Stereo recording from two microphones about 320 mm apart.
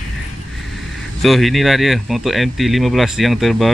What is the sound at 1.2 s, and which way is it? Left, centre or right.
Speech, centre.